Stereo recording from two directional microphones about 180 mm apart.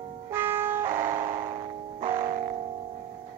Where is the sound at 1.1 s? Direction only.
45° right (ahead or behind).